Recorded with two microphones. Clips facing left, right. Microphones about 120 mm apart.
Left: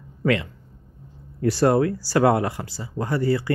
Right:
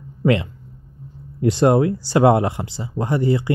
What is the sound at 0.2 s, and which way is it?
Speech, 25° right (ahead or behind).